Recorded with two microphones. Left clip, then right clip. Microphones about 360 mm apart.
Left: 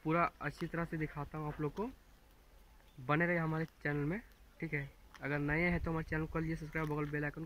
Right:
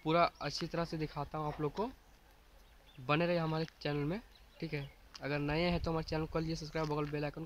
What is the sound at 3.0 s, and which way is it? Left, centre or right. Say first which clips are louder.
Speech: right 1 dB; centre.